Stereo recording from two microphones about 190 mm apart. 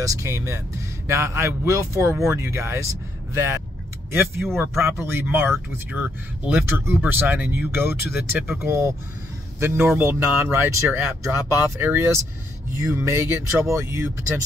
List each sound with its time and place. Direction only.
0.0 s speech: 15° right (ahead or behind)
4.2 s speech: centre (ahead or behind)